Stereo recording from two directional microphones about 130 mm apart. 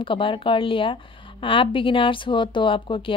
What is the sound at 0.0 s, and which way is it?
Speech, 40° left (ahead or behind).